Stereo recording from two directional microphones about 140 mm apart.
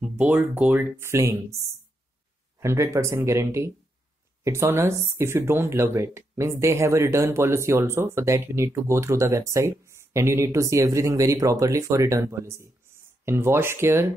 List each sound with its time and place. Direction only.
0.0 s speech: 10° right (ahead or behind)
2.6 s speech: 20° right (ahead or behind)